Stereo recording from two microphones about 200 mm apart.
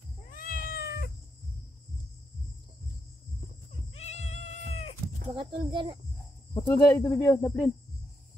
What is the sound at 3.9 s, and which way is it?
Cat, 35° left (ahead or behind).